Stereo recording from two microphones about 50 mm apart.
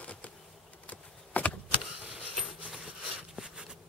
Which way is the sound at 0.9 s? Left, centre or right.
Left.